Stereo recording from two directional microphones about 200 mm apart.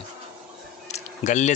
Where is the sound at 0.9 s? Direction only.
35° left (ahead or behind).